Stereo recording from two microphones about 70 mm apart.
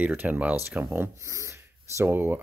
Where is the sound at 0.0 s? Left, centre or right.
Right.